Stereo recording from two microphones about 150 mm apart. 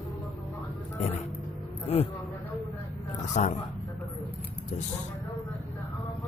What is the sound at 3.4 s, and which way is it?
Speech, 55° left (ahead or behind).